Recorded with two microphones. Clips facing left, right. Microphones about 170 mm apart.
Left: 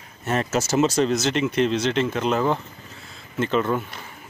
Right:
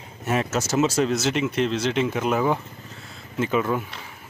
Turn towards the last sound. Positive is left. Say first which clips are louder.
# left 1 dB
turn(degrees=-5)  # may be behind; listen again after turning